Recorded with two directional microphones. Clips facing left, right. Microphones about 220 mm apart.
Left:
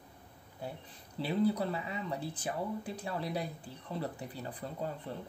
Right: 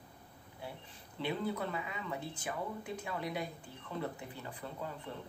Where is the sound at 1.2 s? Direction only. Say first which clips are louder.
Left 6 dB; 35° left (ahead or behind).